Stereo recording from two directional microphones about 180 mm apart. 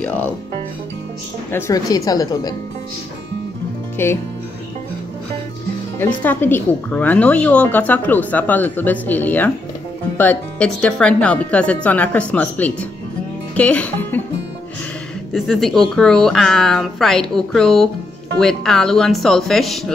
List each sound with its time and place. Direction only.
0.0 s speech: 5° left (ahead or behind)
1.5 s speech: 20° left (ahead or behind)
4.0 s speech: 10° left (ahead or behind)
5.9 s speech: 10° left (ahead or behind)
15.3 s a woman's voice: centre (ahead or behind)